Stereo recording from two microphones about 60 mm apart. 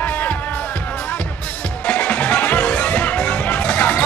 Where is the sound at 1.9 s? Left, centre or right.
Left.